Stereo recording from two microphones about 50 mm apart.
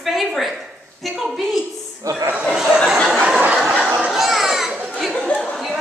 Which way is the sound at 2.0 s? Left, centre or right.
Right.